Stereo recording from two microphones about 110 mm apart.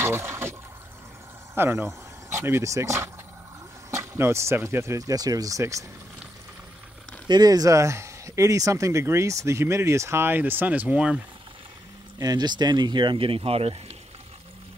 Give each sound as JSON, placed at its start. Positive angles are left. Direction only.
{"t": 0.0, "sound": "water", "side_deg": -20}
{"t": 1.5, "sound": "speech", "side_deg": -20}
{"t": 7.2, "sound": "speech", "side_deg": -40}
{"t": 12.2, "sound": "speech", "side_deg": -35}